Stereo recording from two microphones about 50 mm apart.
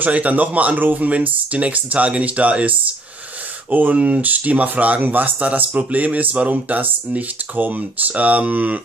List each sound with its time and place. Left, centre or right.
0.0 s speech: right
3.7 s speech: right